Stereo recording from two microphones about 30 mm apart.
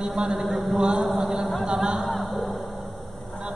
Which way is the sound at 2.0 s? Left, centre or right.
Centre.